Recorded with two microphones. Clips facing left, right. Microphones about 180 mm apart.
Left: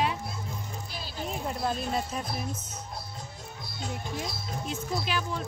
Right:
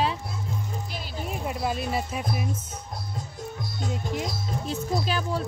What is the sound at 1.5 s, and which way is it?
Speech, 5° right (ahead or behind).